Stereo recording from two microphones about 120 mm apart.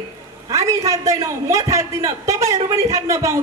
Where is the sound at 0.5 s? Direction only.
25° right (ahead or behind).